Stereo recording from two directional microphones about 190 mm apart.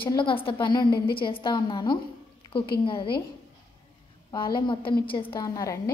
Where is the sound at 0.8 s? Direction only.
55° left (ahead or behind).